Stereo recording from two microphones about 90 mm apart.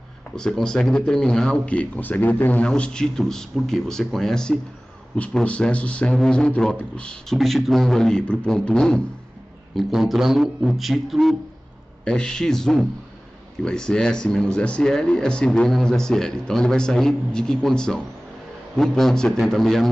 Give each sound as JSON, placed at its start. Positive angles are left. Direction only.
{"t": 0.4, "sound": "speech", "side_deg": 5}
{"t": 9.8, "sound": "a man's voice", "side_deg": 0}